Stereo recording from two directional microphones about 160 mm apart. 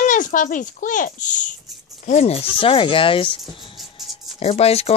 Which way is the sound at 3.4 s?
Centre (ahead or behind).